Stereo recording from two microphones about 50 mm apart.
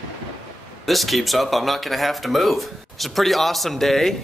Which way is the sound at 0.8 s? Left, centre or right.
Centre.